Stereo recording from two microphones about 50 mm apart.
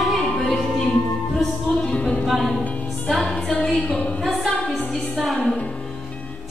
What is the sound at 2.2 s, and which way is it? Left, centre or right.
Music, centre.